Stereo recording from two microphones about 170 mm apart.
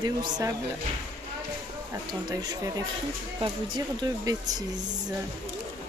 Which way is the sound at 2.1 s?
25° right (ahead or behind).